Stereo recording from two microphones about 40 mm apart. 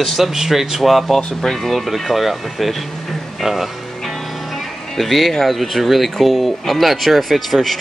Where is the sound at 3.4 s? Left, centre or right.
Centre.